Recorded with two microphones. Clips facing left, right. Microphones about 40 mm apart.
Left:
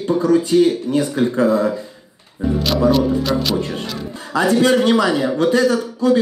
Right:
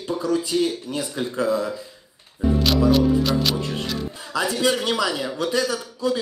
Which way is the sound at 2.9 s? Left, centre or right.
Centre.